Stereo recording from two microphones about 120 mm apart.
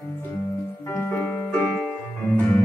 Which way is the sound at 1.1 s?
15° left (ahead or behind).